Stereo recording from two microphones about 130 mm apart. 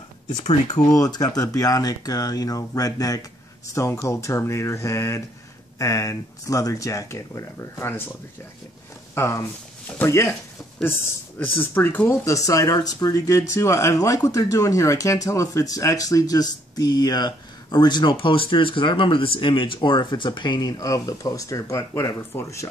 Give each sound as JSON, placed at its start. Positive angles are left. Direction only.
{"t": 0.7, "sound": "speech", "side_deg": 30}
{"t": 9.1, "sound": "speech", "side_deg": 20}